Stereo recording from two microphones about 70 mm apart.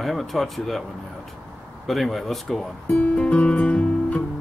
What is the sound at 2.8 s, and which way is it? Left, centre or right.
Music, centre.